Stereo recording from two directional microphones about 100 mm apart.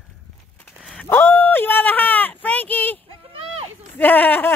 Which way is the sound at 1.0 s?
25° left (ahead or behind).